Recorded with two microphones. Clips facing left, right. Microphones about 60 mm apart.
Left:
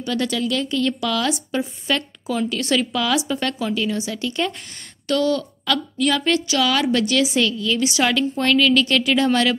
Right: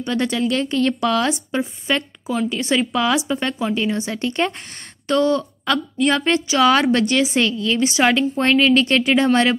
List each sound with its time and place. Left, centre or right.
0.1 s a woman's voice: right